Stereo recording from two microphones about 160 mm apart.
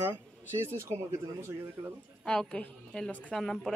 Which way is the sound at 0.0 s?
15° right (ahead or behind).